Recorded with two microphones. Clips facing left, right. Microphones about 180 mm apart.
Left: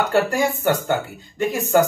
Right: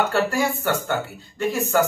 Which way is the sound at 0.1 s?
15° left (ahead or behind).